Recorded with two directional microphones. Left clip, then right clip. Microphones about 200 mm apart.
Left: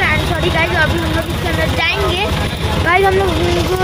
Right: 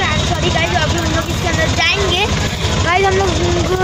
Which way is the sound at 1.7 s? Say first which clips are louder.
Right 2 dB; centre (ahead or behind).